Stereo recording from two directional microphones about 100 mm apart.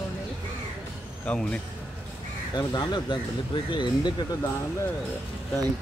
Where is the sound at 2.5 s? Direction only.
45° left (ahead or behind).